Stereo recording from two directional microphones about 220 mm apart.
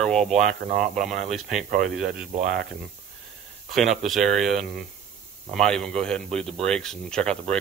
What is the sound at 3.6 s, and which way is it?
Speech, centre (ahead or behind).